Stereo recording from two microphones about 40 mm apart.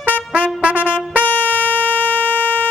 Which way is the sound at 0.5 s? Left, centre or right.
Right.